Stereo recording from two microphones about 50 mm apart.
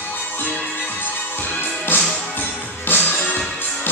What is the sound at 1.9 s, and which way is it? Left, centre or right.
Music, left.